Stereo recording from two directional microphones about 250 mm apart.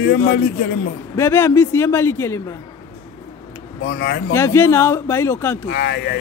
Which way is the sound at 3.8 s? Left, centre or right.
Left.